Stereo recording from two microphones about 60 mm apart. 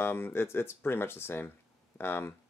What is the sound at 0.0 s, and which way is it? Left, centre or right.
Speech, left.